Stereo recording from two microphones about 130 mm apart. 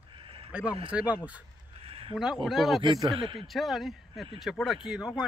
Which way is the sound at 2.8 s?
35° right (ahead or behind).